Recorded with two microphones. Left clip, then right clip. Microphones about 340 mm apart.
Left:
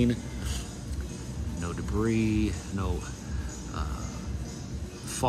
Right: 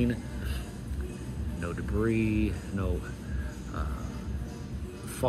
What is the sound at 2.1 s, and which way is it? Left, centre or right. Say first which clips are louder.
Speech: left 1 dB; left.